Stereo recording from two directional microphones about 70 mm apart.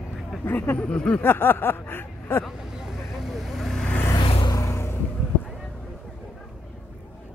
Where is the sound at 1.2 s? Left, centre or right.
Left.